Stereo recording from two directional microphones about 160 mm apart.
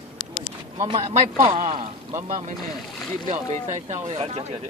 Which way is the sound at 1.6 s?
45° right (ahead or behind).